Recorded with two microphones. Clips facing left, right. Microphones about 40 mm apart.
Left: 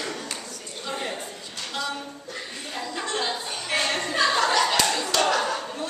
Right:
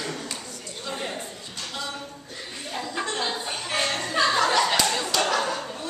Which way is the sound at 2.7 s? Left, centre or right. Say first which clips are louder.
Right 1 dB; centre.